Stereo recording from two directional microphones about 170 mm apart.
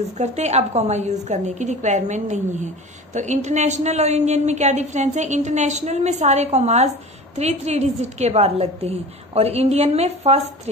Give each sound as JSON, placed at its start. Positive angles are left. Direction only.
{"t": 0.2, "sound": "a woman's voice", "side_deg": -40}